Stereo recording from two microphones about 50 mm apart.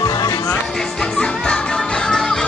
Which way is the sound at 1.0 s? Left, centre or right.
Left.